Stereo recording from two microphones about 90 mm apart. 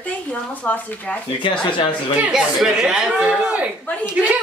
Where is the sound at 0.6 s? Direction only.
15° left (ahead or behind).